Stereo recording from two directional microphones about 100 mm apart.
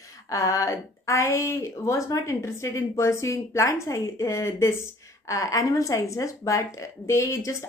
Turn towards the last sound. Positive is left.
turn(degrees=30)  # may be behind; listen again after turning